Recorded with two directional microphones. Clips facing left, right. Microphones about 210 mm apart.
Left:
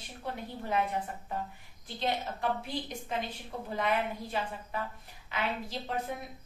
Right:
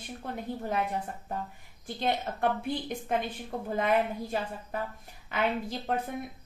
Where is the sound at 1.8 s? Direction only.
55° right (ahead or behind).